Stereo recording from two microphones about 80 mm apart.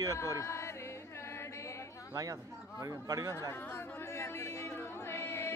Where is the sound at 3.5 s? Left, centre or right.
Left.